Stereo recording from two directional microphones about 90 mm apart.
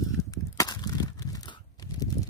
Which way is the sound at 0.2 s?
40° left (ahead or behind).